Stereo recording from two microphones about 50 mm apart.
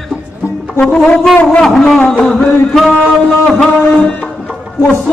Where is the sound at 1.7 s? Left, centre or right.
Centre.